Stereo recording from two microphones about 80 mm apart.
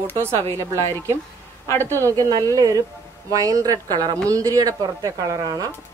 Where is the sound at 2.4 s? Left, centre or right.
Right.